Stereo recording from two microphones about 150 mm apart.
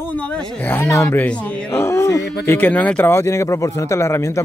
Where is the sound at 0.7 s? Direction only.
15° left (ahead or behind).